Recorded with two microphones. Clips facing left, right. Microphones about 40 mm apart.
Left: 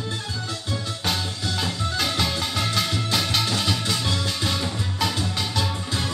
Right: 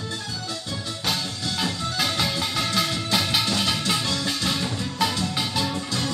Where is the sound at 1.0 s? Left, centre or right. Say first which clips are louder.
Even; centre.